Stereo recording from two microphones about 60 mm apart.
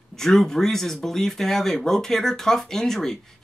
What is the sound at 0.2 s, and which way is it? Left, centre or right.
Speech, centre.